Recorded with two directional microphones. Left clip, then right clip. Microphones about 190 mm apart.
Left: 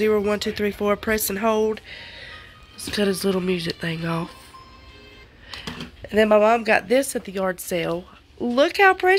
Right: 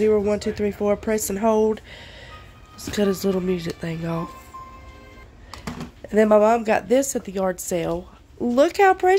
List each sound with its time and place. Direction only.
0.0 s speech: centre (ahead or behind)
5.5 s a sound: 25° right (ahead or behind)
6.0 s speech: 10° right (ahead or behind)